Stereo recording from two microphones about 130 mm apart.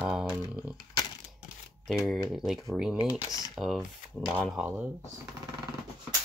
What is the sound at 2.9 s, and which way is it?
Speech, 30° left (ahead or behind).